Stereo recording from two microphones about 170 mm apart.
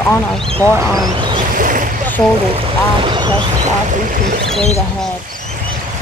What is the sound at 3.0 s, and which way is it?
Boat, 25° right (ahead or behind).